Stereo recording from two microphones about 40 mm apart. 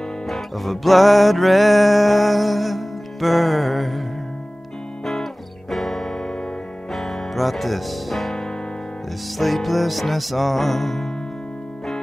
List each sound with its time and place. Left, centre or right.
0.3 s music: centre
5.0 s music: centre
9.4 s music: centre